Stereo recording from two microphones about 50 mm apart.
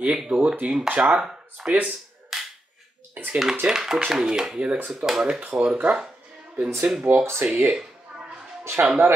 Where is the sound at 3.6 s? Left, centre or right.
Centre.